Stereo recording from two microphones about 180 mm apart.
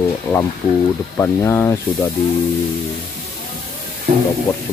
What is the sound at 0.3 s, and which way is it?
Speech, 10° left (ahead or behind).